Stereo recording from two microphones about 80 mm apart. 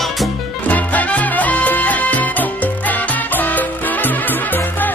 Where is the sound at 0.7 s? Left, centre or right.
Centre.